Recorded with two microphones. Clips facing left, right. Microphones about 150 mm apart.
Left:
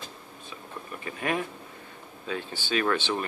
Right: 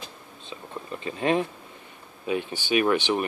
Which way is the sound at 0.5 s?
25° right (ahead or behind).